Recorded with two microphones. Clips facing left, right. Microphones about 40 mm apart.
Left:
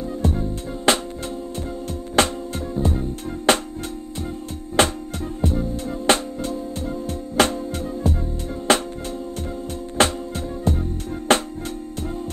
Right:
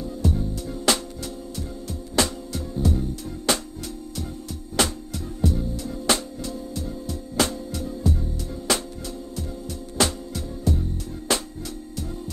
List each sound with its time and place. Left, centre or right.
0.0 s music: left
2.1 s music: left
4.8 s music: left
10.0 s music: left